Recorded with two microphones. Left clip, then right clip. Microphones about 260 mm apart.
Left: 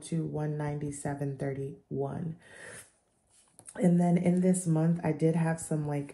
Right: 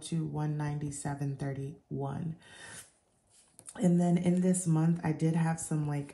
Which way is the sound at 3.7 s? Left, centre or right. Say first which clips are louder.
Left 2 dB; centre.